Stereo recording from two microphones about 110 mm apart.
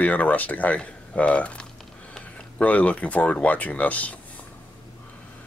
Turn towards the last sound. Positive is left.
turn(degrees=15)  # may be behind; listen again after turning